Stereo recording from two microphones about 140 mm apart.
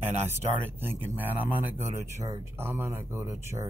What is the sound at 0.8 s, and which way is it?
Speech, 15° right (ahead or behind).